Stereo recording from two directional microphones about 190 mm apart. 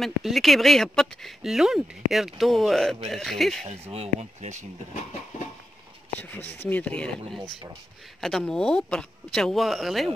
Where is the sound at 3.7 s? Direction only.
30° right (ahead or behind).